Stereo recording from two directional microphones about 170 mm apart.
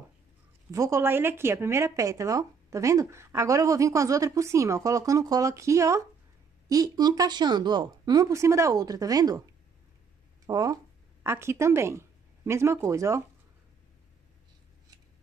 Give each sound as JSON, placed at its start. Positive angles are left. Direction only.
{"t": 0.7, "sound": "a woman's voice", "side_deg": -15}
{"t": 10.4, "sound": "speech", "side_deg": -20}